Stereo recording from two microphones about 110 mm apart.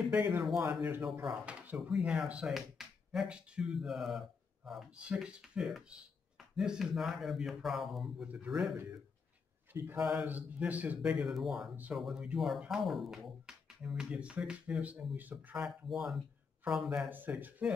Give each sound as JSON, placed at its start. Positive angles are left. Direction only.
{"t": 0.1, "sound": "speech", "side_deg": -10}
{"t": 9.7, "sound": "speech", "side_deg": -20}
{"t": 15.6, "sound": "speech", "side_deg": -5}
{"t": 17.1, "sound": "speech", "side_deg": -15}